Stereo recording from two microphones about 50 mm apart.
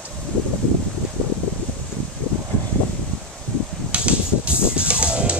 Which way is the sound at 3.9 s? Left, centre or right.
Right.